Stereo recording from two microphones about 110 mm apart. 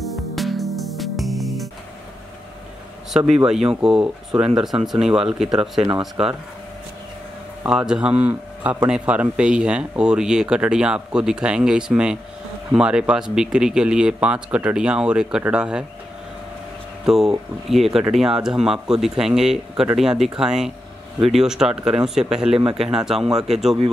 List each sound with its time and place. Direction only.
0.0 s music: centre (ahead or behind)
3.1 s speech: 5° right (ahead or behind)
7.6 s speech: 5° right (ahead or behind)
17.0 s speech: 5° right (ahead or behind)